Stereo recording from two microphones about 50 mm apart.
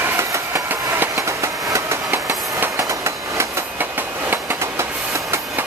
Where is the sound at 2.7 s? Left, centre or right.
Right.